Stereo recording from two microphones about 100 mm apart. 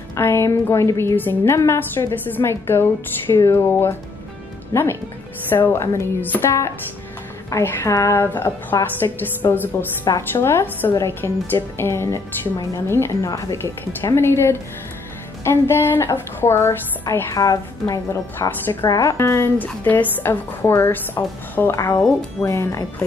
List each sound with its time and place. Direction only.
0.1 s a woman's voice: 25° left (ahead or behind)
7.4 s a woman's voice: 25° left (ahead or behind)